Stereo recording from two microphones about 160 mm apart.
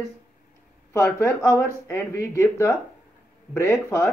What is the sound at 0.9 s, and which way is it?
Speech, 15° left (ahead or behind).